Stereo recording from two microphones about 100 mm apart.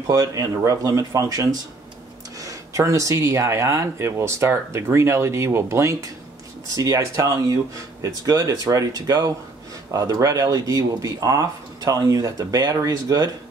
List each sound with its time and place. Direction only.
0.0 s speech: 35° right (ahead or behind)